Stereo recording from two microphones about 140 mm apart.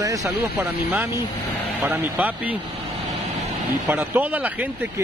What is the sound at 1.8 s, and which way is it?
Speech, 10° right (ahead or behind).